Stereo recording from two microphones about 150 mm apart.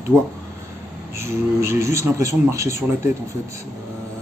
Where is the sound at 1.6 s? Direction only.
20° right (ahead or behind).